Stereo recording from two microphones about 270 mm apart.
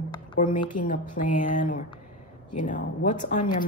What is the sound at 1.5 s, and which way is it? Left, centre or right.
A woman's voice, left.